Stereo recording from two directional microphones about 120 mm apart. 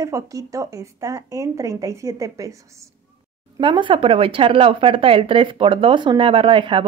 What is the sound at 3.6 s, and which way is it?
Speech, 40° right (ahead or behind).